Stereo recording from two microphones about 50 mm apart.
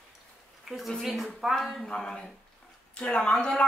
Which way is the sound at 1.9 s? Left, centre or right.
Centre.